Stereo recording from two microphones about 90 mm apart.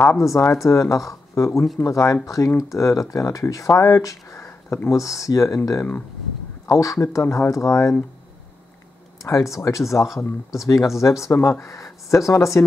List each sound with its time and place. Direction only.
0.2 s speech: 35° left (ahead or behind)
6.7 s speech: 40° left (ahead or behind)
9.2 s speech: 35° left (ahead or behind)
9.9 s speech: centre (ahead or behind)
10.5 s speech: 35° left (ahead or behind)